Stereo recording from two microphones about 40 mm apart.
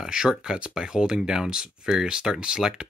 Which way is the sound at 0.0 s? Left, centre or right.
Centre.